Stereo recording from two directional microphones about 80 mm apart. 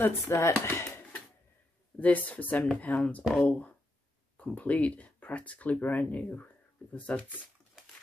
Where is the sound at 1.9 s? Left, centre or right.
Centre.